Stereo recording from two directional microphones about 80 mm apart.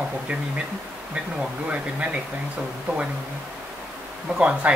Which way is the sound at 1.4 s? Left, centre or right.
Centre.